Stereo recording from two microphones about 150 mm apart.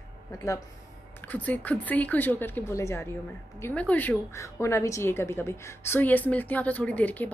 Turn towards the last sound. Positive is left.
turn(degrees=10)  # may be behind; listen again after turning